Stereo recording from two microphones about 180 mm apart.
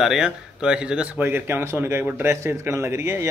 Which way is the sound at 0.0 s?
5° right (ahead or behind).